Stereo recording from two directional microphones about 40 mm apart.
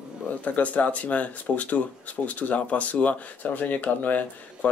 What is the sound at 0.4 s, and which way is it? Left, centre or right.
Speech, left.